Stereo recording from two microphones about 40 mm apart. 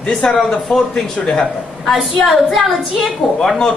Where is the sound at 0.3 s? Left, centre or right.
Centre.